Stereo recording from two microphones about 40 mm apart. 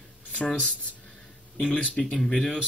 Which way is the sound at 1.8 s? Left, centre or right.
Left.